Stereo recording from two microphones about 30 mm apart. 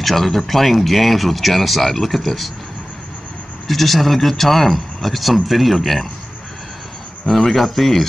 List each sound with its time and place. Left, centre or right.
0.0 s speech: centre
3.6 s speech: centre
7.2 s speech: centre